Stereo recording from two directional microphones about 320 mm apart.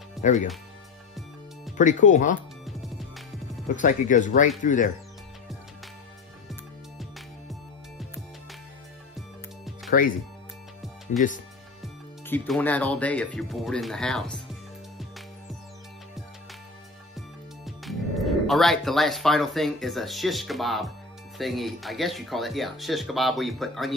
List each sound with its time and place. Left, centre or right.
0.2 s speech: left
1.8 s speech: left
2.6 s music: centre
3.7 s speech: left
6.5 s music: centre
10.0 s speech: left
11.1 s speech: centre
11.8 s music: centre
17.6 s speech: centre